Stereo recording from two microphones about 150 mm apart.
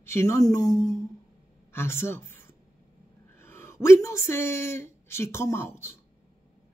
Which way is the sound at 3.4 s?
15° left (ahead or behind).